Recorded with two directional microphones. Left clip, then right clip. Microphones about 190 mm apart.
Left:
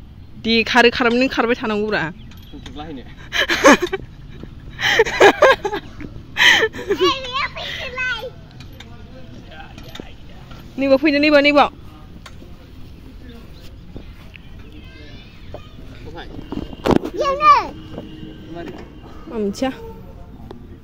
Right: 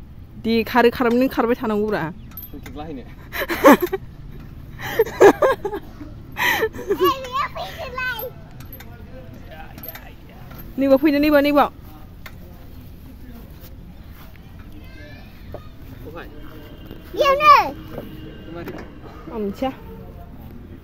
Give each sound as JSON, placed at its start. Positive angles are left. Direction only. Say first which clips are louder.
{"t": 0.4, "sound": "speech", "louder": "left 3 dB", "side_deg": -10}
{"t": 4.7, "sound": "a sound", "louder": "left 4 dB", "side_deg": 5}
{"t": 6.3, "sound": "gasp", "louder": "left 7 dB", "side_deg": -5}
{"t": 7.4, "sound": "children playing", "louder": "left 2 dB", "side_deg": -35}
{"t": 7.8, "sound": "a child's voice", "louder": "left 3 dB", "side_deg": -35}
{"t": 10.8, "sound": "speech", "louder": "left 1 dB", "side_deg": -15}
{"t": 17.1, "sound": "a sound", "louder": "right 2 dB", "side_deg": -60}
{"t": 19.3, "sound": "a woman's voice", "louder": "left 3 dB", "side_deg": 25}